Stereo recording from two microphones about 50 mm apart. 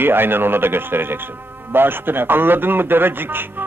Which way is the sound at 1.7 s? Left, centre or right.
Right.